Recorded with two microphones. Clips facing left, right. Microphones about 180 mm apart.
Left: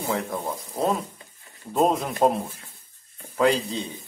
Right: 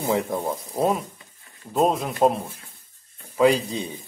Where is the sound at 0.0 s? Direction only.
20° right (ahead or behind).